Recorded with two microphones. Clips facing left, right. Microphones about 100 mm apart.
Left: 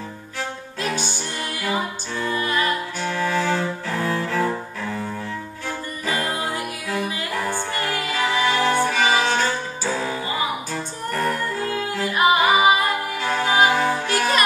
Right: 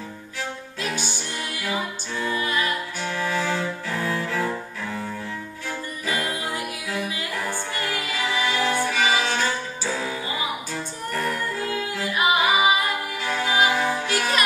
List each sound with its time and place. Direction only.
2.1 s music: 10° right (ahead or behind)
3.3 s cello: 40° left (ahead or behind)
6.9 s music: 50° left (ahead or behind)
12.6 s a capella: 45° left (ahead or behind)
14.1 s music: 45° left (ahead or behind)